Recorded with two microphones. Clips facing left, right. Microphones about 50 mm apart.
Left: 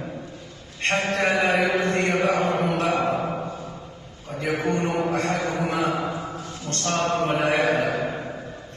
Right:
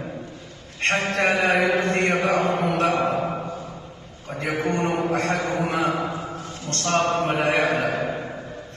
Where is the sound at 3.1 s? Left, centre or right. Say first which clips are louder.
Right 1 dB; centre.